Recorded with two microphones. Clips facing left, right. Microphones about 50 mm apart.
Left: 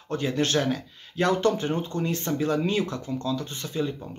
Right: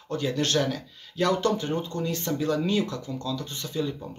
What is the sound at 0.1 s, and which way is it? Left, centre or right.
Speech, left.